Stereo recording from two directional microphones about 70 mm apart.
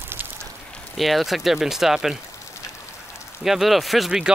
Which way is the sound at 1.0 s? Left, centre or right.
Centre.